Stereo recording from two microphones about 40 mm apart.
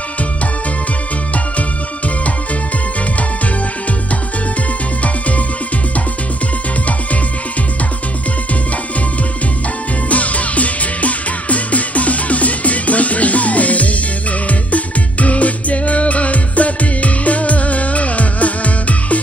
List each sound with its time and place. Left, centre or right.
10.0 s music: left